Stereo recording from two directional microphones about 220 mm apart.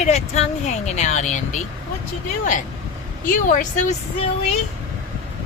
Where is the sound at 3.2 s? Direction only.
40° left (ahead or behind).